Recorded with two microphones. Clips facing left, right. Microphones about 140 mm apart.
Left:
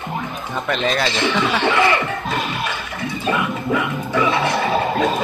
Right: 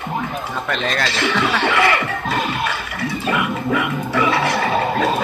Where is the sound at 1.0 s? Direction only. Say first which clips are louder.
Even; 20° left (ahead or behind).